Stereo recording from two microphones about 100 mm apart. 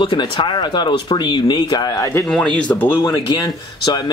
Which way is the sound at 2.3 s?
10° left (ahead or behind).